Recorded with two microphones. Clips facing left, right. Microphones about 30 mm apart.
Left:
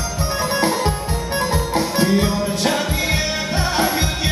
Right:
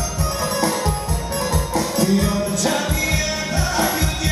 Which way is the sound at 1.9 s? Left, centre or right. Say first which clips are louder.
Left 1 dB; left.